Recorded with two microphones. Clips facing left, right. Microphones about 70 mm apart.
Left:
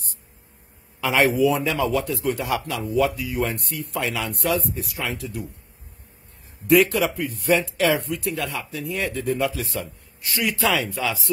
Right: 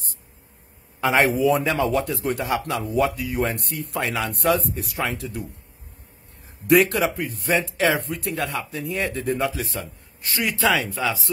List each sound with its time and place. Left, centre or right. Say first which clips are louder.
1.1 s a man's voice: even; right
7.0 s a man's voice: even; right